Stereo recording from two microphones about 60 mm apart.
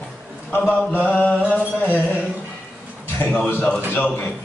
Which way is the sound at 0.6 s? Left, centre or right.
Left.